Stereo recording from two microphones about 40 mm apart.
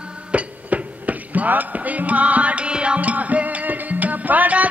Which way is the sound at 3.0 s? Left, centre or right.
Right.